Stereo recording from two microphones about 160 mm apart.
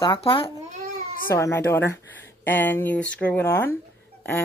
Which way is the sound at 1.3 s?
15° left (ahead or behind).